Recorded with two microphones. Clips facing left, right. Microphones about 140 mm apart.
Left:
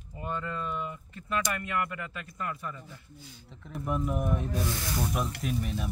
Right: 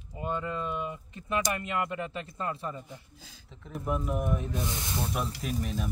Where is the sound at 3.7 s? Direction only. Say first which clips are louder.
Even; centre (ahead or behind).